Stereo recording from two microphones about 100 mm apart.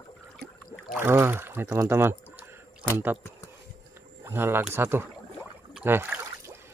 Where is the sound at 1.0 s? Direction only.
25° right (ahead or behind).